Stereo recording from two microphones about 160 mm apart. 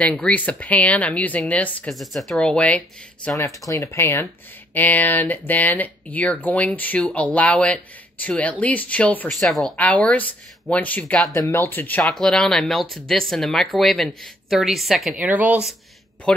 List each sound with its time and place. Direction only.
0.0 s speech: 10° left (ahead or behind)
3.3 s a woman's voice: 20° left (ahead or behind); by 15.7 s 10° right (ahead or behind)
16.3 s a woman's voice: 5° left (ahead or behind)